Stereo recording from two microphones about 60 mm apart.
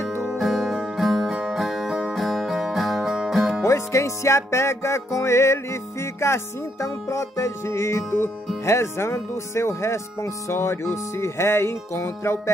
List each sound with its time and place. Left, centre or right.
0.2 s music: centre
3.6 s music: left